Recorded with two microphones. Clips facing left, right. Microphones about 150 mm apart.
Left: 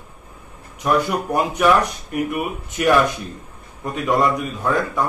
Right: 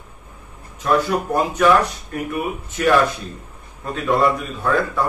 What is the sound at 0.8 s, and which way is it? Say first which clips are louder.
A man's voice: right 1 dB; 15° left (ahead or behind).